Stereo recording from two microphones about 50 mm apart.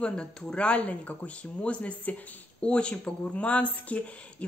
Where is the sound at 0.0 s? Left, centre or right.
Left.